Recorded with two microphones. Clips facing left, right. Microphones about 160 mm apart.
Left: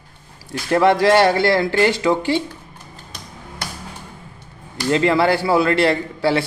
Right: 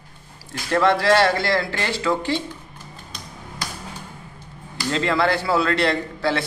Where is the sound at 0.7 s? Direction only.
15° left (ahead or behind).